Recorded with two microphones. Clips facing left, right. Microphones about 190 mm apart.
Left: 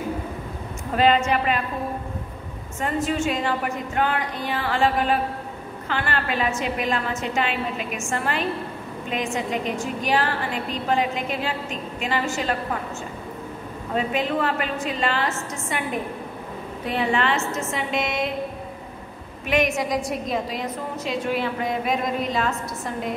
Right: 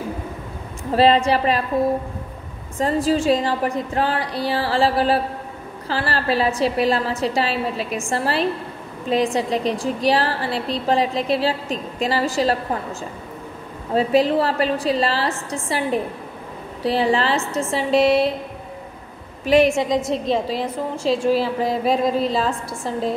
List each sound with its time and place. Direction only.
0.9 s a woman's voice: 35° right (ahead or behind)
2.8 s a woman's voice: 35° right (ahead or behind)
13.9 s a woman's voice: 35° right (ahead or behind)
19.4 s a woman's voice: 35° right (ahead or behind)